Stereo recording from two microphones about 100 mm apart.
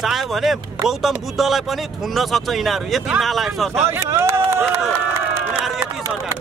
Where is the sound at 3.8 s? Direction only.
30° right (ahead or behind).